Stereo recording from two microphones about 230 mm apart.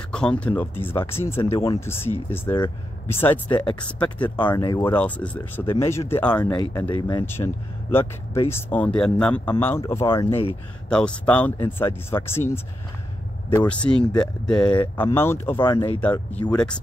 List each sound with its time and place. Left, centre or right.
0.1 s speech: centre
10.9 s speech: centre
16.0 s speech: centre